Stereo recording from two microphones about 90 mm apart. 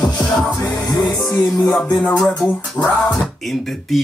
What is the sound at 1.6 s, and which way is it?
Music, 25° left (ahead or behind).